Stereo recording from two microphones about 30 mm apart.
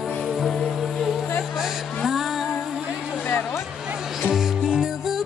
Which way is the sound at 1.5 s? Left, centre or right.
Centre.